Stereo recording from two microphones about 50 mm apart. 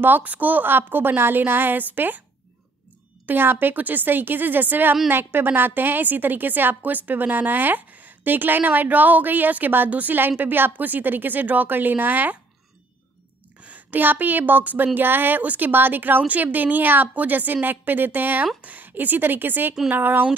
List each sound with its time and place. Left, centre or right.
0.0 s a woman's voice: right
3.3 s a woman's voice: right
13.6 s a woman's voice: right